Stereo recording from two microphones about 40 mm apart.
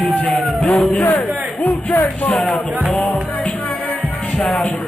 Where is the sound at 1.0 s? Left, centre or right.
Left.